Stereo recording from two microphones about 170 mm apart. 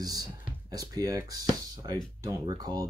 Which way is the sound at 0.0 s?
20° right (ahead or behind).